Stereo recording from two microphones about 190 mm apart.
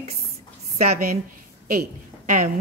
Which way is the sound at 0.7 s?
45° right (ahead or behind).